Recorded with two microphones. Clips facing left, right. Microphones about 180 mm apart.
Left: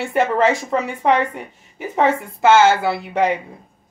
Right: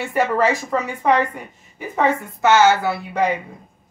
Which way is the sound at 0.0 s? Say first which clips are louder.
Left 2 dB; 25° left (ahead or behind).